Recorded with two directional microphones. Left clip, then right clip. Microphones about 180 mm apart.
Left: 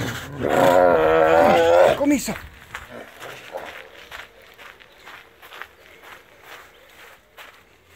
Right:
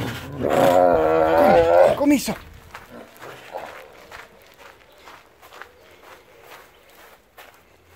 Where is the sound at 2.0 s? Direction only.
5° right (ahead or behind).